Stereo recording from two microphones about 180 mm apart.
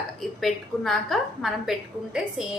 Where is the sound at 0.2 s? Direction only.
Centre (ahead or behind).